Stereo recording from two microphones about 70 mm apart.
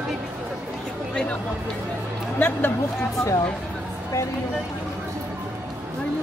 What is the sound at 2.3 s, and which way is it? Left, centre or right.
Speech, left.